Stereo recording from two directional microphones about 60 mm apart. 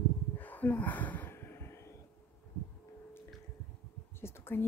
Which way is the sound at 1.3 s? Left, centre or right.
Left.